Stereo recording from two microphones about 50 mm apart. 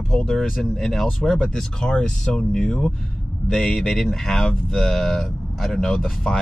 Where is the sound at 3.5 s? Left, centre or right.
Centre.